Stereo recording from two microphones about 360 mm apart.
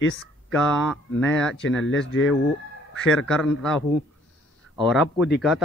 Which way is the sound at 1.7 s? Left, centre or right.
Left.